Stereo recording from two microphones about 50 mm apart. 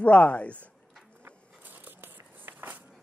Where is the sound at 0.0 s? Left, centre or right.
Left.